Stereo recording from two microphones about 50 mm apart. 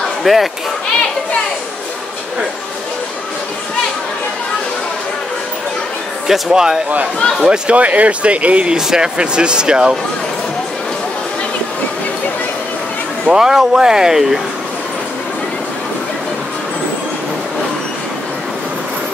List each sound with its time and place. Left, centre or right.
0.2 s speech: centre
6.2 s speech: centre
8.7 s speech: centre
13.3 s speech: centre